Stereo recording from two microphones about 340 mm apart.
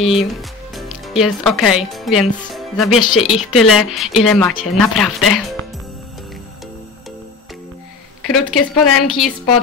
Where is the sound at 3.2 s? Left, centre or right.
Left.